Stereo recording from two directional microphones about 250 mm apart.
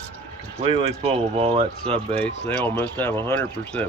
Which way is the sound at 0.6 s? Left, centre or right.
Right.